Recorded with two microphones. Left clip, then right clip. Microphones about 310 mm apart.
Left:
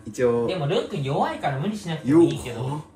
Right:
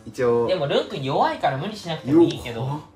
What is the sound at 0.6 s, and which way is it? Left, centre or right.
Speech, right.